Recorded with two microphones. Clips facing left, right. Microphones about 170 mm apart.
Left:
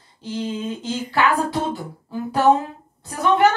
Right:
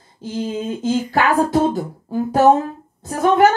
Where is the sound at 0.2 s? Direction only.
45° right (ahead or behind).